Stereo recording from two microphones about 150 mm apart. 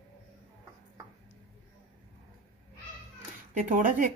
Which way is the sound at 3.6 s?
60° right (ahead or behind).